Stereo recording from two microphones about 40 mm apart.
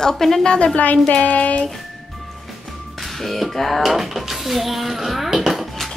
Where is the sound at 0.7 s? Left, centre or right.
Left.